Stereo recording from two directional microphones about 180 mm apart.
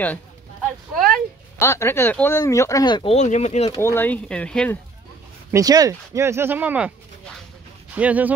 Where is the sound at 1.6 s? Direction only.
15° left (ahead or behind).